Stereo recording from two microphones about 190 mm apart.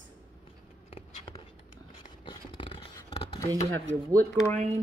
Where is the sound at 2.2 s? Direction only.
25° left (ahead or behind).